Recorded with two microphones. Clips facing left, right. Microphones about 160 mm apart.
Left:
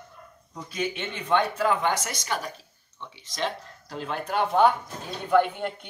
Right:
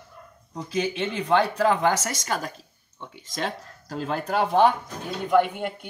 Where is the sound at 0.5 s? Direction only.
30° right (ahead or behind).